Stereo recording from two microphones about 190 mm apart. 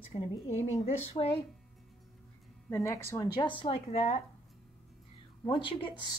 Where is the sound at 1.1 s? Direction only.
30° left (ahead or behind).